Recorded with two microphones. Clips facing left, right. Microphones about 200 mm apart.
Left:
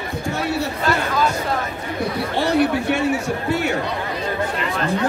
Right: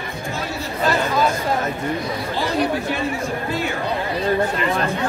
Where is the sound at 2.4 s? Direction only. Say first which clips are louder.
Left 4 dB; 70° left (ahead or behind).